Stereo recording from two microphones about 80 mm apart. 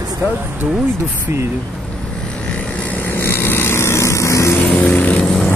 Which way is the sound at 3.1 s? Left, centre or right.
Left.